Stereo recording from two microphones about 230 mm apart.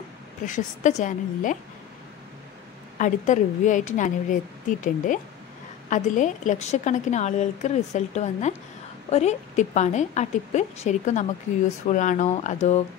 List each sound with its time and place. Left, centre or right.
0.5 s a woman's voice: left
3.0 s a woman's voice: left